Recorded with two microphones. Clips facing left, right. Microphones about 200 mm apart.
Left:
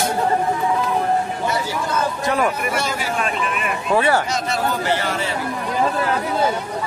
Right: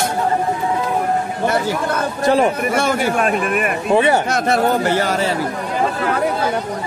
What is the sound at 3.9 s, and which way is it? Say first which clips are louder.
Speech: right 3 dB; 20° right (ahead or behind).